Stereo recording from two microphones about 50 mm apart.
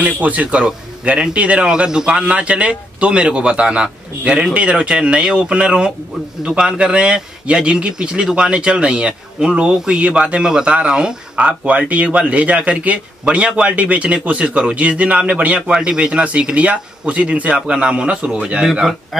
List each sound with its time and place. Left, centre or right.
0.0 s a man's voice: right
1.7 s a man's voice: centre
18.7 s speech: centre